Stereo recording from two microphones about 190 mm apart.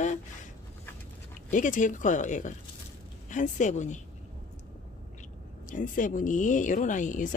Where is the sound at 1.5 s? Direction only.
45° left (ahead or behind).